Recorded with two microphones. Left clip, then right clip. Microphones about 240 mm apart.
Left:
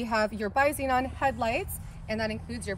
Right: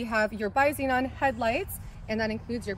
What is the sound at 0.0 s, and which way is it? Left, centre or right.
A woman's voice, left.